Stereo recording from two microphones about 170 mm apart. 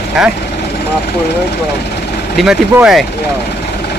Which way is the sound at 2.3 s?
5° right (ahead or behind).